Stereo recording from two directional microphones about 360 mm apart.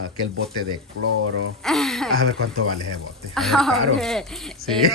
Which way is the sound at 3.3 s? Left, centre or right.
Centre.